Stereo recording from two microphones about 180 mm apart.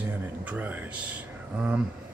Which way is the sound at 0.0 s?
10° right (ahead or behind).